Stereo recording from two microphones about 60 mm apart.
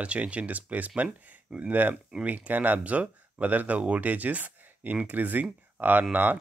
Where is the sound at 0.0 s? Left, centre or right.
Right.